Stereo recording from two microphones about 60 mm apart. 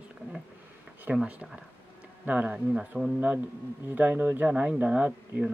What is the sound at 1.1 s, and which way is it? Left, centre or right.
Speech, centre.